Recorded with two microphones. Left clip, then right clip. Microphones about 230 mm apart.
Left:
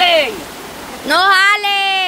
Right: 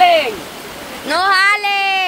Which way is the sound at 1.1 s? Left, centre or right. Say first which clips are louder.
Left 2 dB; centre.